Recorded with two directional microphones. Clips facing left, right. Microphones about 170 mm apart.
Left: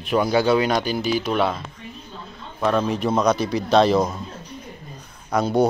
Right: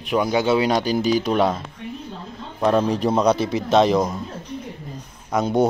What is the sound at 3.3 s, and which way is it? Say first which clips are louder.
Speech: right 1 dB; 25° right (ahead or behind).